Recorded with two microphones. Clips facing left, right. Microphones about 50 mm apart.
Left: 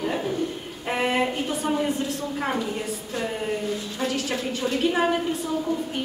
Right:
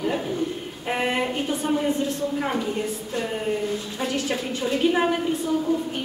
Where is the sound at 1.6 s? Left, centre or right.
Centre.